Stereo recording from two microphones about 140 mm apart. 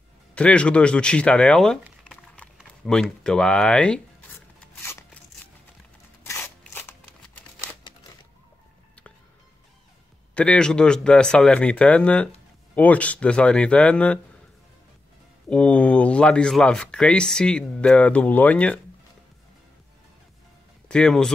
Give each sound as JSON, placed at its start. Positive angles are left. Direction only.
{"t": 0.3, "sound": "speech", "side_deg": 10}
{"t": 2.0, "sound": "a sound", "side_deg": 10}
{"t": 6.2, "sound": "a sound", "side_deg": 20}
{"t": 10.3, "sound": "speech", "side_deg": 5}
{"t": 15.5, "sound": "speech", "side_deg": 10}
{"t": 20.9, "sound": "speech", "side_deg": 5}